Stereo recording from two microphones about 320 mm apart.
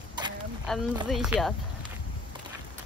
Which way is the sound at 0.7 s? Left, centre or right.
Centre.